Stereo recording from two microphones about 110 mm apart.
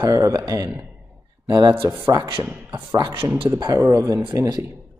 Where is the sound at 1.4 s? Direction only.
40° right (ahead or behind).